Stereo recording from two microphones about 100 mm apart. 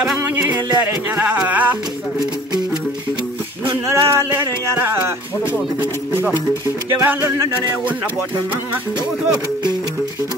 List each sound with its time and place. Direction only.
0.2 s a sound: 25° right (ahead or behind)
0.7 s speech: 20° right (ahead or behind)
3.9 s speech: 30° right (ahead or behind)
6.9 s speech: 25° right (ahead or behind)